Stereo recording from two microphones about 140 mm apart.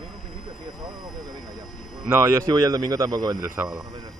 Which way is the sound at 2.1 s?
20° right (ahead or behind).